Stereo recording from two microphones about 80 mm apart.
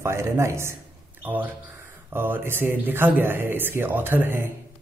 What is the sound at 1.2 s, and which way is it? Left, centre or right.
Speech, right.